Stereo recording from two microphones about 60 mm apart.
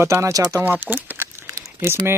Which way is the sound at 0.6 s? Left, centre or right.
Right.